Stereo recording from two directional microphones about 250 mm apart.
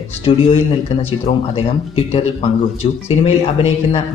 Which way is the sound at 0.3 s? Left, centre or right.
Left.